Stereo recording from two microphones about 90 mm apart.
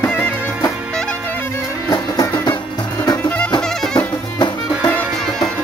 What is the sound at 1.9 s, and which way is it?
Music, 40° left (ahead or behind).